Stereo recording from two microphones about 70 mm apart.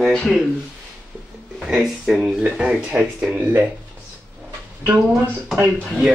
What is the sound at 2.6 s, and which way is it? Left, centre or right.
Speech, centre.